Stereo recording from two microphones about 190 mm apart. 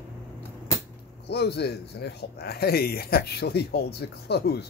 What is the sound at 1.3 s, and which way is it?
Speech, 60° left (ahead or behind).